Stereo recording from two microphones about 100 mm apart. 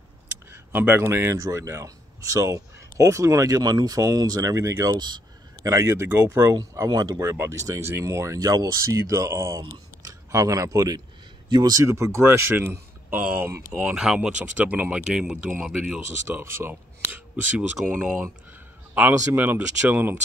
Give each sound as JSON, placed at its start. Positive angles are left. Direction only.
{"t": 0.5, "sound": "speech", "side_deg": -20}
{"t": 4.9, "sound": "speech", "side_deg": -50}
{"t": 5.6, "sound": "a man's voice", "side_deg": -30}
{"t": 13.7, "sound": "speech", "side_deg": -10}
{"t": 16.3, "sound": "a man's voice", "side_deg": -25}